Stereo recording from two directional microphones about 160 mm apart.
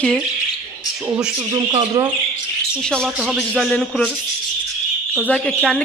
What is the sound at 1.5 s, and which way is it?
Speech, 25° right (ahead or behind).